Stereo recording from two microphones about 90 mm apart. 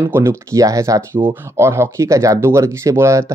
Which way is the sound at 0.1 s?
30° right (ahead or behind).